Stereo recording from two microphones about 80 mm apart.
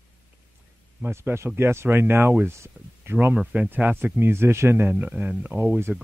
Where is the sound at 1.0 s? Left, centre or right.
Right.